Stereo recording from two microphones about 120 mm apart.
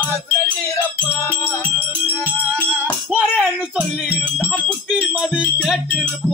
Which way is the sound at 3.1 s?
10° right (ahead or behind).